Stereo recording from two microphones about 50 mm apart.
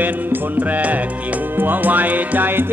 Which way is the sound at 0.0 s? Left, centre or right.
Right.